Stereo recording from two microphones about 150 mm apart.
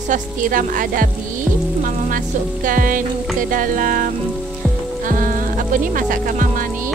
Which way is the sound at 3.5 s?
65° right (ahead or behind).